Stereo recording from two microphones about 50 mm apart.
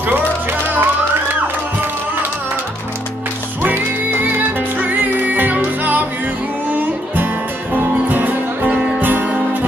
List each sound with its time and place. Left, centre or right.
0.0 s music: right
3.6 s music: right